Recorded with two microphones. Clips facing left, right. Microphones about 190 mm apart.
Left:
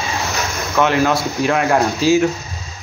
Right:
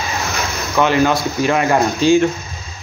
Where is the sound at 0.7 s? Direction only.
Centre (ahead or behind).